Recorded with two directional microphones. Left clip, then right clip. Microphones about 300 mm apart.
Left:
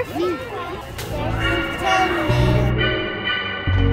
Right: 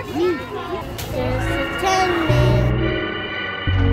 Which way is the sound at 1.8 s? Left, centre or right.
Centre.